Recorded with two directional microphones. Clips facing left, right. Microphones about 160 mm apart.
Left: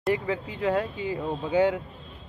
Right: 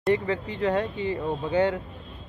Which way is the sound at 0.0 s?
5° left (ahead or behind).